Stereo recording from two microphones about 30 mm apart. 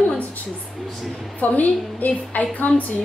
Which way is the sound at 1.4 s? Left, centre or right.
Left.